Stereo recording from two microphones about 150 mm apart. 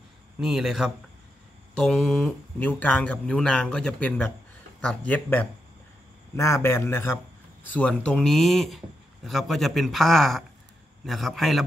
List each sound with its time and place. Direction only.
0.4 s speech: centre (ahead or behind)